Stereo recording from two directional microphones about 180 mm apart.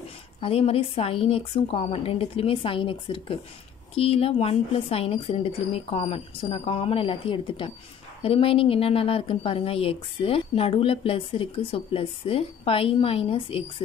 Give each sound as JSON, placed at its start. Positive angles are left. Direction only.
{"t": 0.4, "sound": "a woman's voice", "side_deg": 35}